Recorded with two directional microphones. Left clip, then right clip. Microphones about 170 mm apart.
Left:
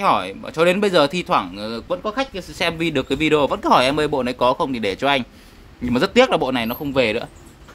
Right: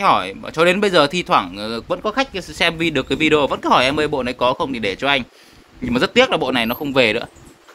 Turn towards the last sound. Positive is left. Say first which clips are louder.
# right 3 dB
turn(degrees=-5)  # may be behind; listen again after turning